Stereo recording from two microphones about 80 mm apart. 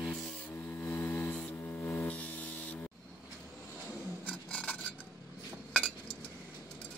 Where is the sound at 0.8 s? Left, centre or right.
Left.